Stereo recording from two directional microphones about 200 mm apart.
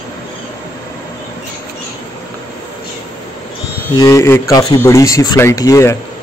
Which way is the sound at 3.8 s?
15° left (ahead or behind).